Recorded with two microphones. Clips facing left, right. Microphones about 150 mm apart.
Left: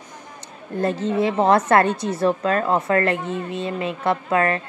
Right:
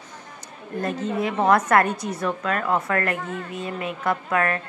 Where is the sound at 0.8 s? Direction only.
30° left (ahead or behind).